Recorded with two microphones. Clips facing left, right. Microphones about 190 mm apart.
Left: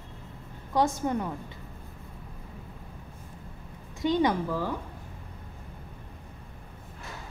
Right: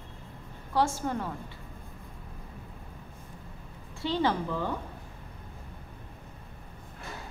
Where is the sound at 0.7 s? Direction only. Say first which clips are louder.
Left 2 dB; 20° left (ahead or behind).